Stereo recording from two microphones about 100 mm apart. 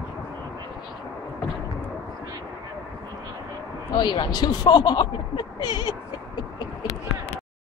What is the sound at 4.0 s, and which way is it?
Speech, 45° left (ahead or behind).